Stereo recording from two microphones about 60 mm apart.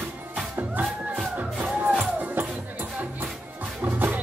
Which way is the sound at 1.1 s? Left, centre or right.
Right.